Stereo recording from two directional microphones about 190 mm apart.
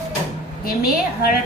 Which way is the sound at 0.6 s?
50° left (ahead or behind).